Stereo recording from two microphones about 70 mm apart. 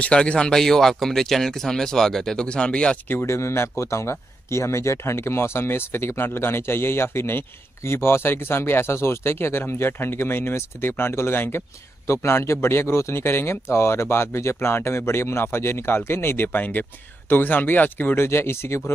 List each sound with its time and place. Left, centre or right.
0.0 s speech: centre
3.1 s speech: left